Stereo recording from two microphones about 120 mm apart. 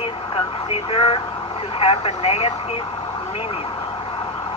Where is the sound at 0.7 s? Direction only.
50° left (ahead or behind).